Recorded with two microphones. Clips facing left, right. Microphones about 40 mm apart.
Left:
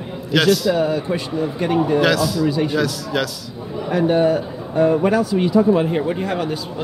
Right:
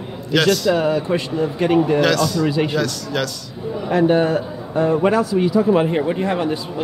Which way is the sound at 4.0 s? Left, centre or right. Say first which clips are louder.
Right 1 dB; centre.